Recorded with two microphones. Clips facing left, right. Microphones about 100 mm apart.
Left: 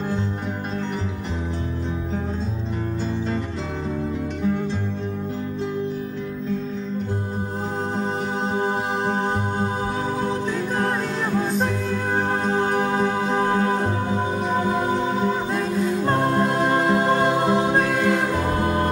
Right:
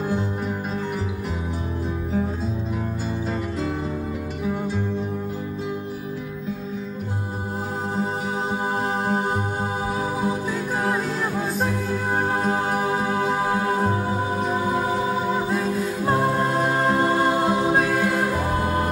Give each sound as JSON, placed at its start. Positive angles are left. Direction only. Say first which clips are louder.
{"t": 8.5, "sound": "music", "louder": "left 2 dB", "side_deg": -5}
{"t": 15.0, "sound": "music", "louder": "left 1 dB", "side_deg": -5}